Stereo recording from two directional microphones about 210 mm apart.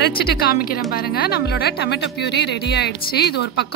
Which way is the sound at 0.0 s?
50° left (ahead or behind).